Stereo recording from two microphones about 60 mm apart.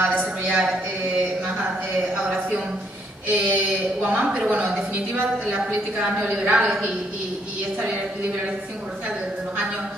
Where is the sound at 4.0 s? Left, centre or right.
Right.